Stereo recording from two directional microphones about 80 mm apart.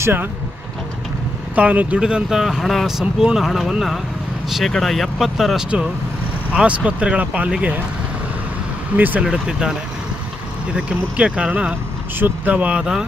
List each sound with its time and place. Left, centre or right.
0.0 s speech: right
1.5 s speech: centre
6.5 s speech: centre
8.9 s speech: right
9.2 s speech: centre